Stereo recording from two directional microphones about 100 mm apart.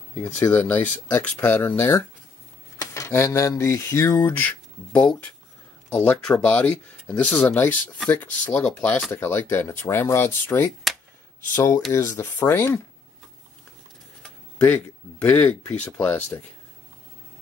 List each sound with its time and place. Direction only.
0.2 s speech: 20° left (ahead or behind)
2.8 s mantra: 30° left (ahead or behind); by 5.3 s 15° left (ahead or behind)
5.9 s speech: 15° left (ahead or behind)
15.2 s speech: 20° left (ahead or behind)